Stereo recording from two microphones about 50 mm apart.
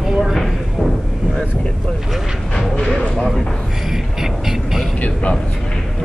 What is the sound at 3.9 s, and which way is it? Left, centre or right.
Music, centre.